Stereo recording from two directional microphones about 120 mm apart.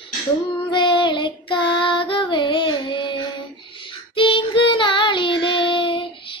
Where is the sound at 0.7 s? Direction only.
45° left (ahead or behind).